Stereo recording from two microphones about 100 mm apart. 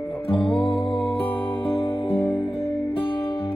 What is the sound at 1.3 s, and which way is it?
Music, 65° left (ahead or behind).